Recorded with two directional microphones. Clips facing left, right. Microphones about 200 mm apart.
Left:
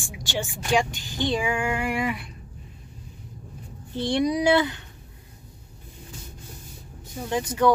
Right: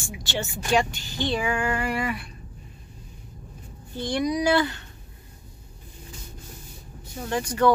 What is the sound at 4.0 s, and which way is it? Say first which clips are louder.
Speech: left 2 dB; 25° left (ahead or behind).